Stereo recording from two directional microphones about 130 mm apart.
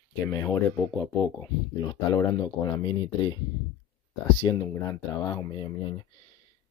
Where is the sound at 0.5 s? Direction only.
15° left (ahead or behind).